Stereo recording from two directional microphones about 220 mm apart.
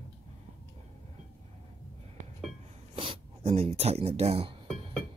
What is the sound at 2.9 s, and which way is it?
Speech, 25° right (ahead or behind).